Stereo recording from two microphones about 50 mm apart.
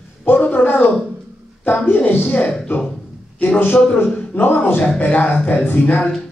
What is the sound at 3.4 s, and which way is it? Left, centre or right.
A man's voice, left.